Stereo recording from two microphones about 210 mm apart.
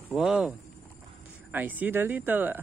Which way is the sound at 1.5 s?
10° right (ahead or behind).